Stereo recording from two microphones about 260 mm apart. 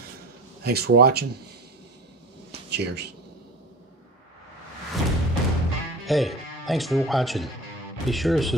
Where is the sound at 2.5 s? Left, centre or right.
Right.